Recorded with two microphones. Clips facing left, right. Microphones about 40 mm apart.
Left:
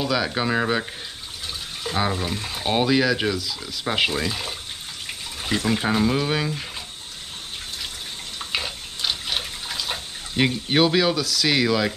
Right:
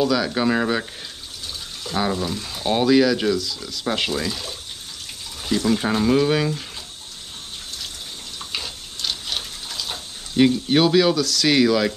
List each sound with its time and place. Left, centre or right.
0.0 s speech: centre
2.1 s speech: left
5.9 s speech: centre
8.4 s water: centre